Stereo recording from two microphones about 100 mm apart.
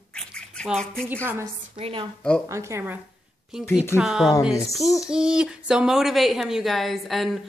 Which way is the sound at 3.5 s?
5° right (ahead or behind).